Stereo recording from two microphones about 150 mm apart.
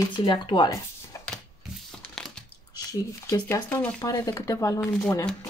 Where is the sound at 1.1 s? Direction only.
20° left (ahead or behind).